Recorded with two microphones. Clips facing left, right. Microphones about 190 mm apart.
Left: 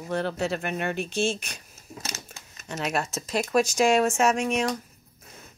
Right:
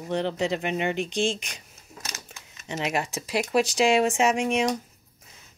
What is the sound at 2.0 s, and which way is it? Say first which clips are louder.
Crumpling: even; 30° left (ahead or behind).